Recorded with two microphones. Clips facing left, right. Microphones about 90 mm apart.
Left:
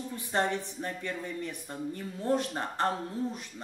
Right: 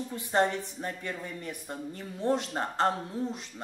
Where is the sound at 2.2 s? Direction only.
20° right (ahead or behind).